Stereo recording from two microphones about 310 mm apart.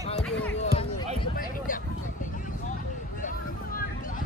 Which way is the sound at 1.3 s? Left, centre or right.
Left.